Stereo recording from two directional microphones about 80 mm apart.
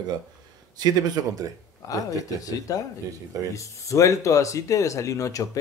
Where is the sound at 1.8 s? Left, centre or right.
Left.